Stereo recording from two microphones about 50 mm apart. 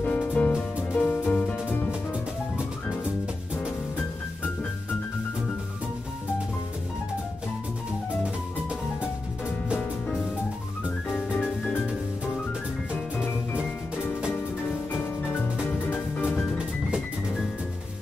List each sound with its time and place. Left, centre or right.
0.0 s music: left